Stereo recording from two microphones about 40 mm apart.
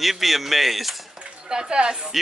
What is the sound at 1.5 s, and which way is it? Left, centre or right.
Speech, centre.